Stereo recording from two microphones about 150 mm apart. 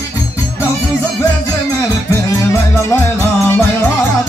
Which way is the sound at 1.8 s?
15° left (ahead or behind).